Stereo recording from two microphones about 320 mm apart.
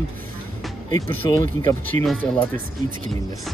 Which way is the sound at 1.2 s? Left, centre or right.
Centre.